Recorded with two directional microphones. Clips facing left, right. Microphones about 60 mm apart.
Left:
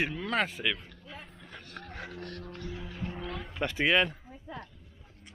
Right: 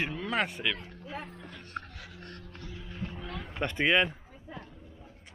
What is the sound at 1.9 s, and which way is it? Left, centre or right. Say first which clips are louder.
Music: left 7 dB; left.